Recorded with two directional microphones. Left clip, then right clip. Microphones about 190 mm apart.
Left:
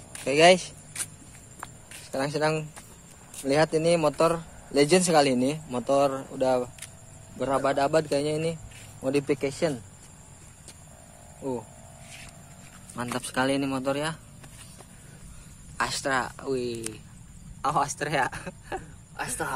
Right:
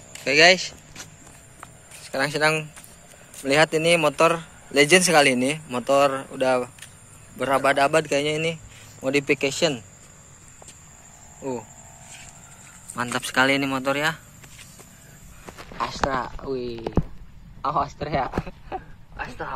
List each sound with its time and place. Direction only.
0.2 s speech: 5° left (ahead or behind)
2.0 s speech: centre (ahead or behind)
12.9 s speech: 5° right (ahead or behind)
15.8 s speech: 5° left (ahead or behind)
19.1 s speech: 80° left